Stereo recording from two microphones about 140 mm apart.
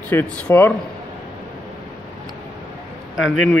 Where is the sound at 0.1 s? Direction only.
10° left (ahead or behind).